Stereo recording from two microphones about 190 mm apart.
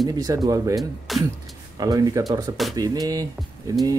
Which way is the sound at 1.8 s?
20° right (ahead or behind).